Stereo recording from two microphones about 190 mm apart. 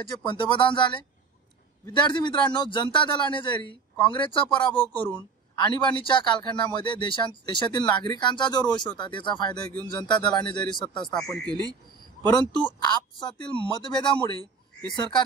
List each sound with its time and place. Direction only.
0.1 s speech: 25° left (ahead or behind)
12.9 s speech: 25° left (ahead or behind)